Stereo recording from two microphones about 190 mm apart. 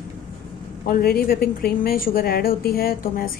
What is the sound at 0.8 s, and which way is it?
A woman's voice, 55° left (ahead or behind).